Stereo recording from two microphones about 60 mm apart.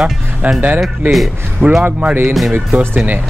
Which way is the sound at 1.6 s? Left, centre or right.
Right.